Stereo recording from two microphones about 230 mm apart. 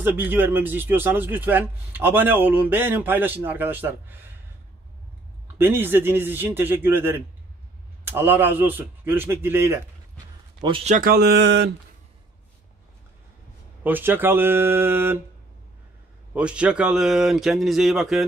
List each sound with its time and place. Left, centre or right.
0.0 s a man's voice: centre
5.6 s a man's voice: centre
10.6 s a man's voice: right
11.0 s mantra: right
13.8 s a man's voice: centre
16.3 s speech: centre